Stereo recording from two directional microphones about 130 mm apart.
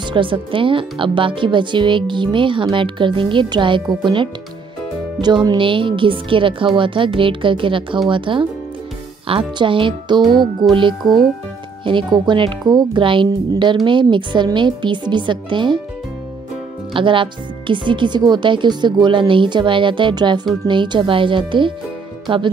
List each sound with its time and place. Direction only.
0.0 s speech: 40° right (ahead or behind)
16.9 s speech: 40° right (ahead or behind)